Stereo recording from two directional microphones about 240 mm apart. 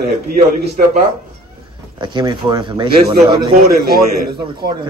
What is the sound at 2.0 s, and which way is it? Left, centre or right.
Speech, centre.